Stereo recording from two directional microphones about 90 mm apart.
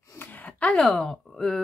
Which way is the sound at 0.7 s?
5° left (ahead or behind).